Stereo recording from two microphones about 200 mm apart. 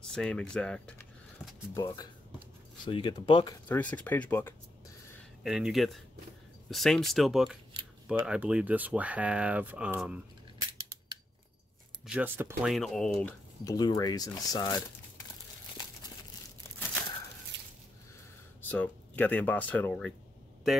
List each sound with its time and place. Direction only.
0.1 s speech: 5° left (ahead or behind); by 3.5 s 25° left (ahead or behind)
3.6 s speech: 10° left (ahead or behind)
5.4 s speech: 5° right (ahead or behind)
12.1 s speech: 10° right (ahead or behind)
12.7 s speech: centre (ahead or behind)
13.7 s speech: 20° left (ahead or behind)
17.5 s a sound: 60° right (ahead or behind)
18.6 s speech: 10° left (ahead or behind)